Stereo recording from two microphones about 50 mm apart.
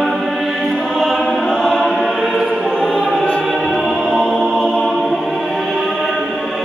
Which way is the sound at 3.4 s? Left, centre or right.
Centre.